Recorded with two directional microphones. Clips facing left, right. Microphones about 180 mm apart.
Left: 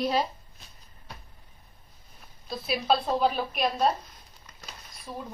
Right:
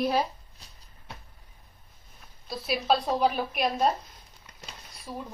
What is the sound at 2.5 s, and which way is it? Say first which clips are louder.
A woman's voice: even; 10° right (ahead or behind).